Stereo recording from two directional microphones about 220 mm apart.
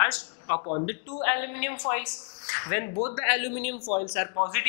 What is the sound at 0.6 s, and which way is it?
Speech, 30° left (ahead or behind).